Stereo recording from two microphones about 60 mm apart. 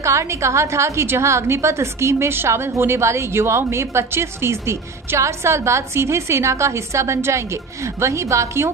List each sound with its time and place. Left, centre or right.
0.0 s a woman's voice: right